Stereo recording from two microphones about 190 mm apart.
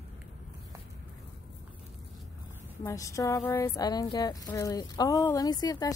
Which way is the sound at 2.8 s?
15° left (ahead or behind).